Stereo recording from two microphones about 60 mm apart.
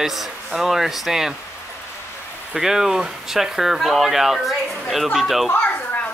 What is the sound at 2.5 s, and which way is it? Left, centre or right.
Speech, centre.